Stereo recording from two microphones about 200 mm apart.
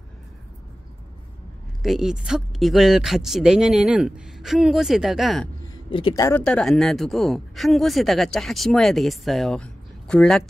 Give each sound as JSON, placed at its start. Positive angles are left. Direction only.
{"t": 1.8, "sound": "speech", "side_deg": 0}
{"t": 5.9, "sound": "speech", "side_deg": 25}
{"t": 6.2, "sound": "speech", "side_deg": 10}